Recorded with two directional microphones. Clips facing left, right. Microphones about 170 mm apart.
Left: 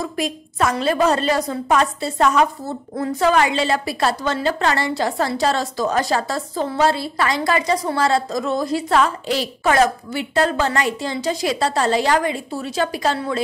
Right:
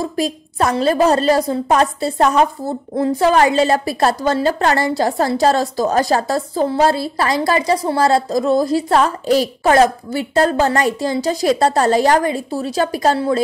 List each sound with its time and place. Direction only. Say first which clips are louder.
0.0 s a woman's voice: right 4 dB; 35° right (ahead or behind)